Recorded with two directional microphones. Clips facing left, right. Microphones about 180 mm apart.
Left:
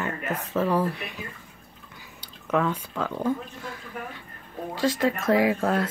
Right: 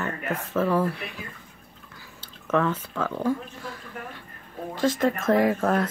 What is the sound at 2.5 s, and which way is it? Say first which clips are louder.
Speech: right 1 dB; 15° left (ahead or behind).